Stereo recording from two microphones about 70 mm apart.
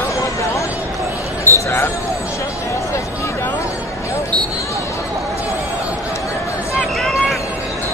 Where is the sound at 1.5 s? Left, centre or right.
Left.